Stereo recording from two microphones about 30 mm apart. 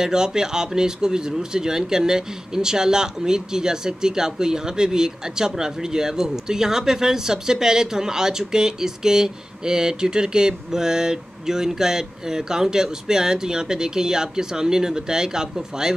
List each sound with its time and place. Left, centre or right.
0.0 s speech: right